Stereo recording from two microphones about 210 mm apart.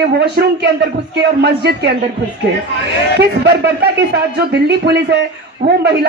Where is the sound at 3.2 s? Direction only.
55° right (ahead or behind).